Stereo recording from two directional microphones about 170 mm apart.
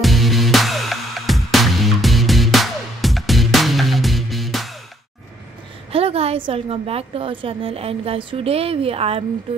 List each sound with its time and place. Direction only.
0.0 s music: centre (ahead or behind)
5.9 s a woman's voice: 35° right (ahead or behind)